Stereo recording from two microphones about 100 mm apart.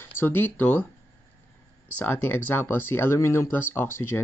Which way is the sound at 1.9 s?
15° left (ahead or behind).